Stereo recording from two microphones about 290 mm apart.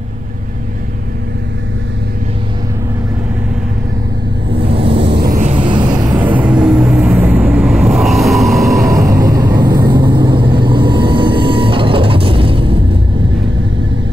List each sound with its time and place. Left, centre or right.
4.6 s vehicle: centre
5.1 s vehicle: right; by 8.8 s centre
8.8 s vehicle: centre